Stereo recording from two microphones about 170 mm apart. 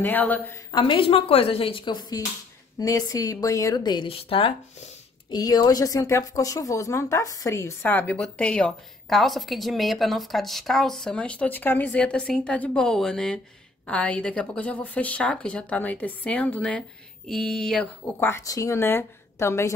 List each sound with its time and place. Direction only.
0.0 s speech: 10° left (ahead or behind)
0.7 s speech: 30° left (ahead or behind)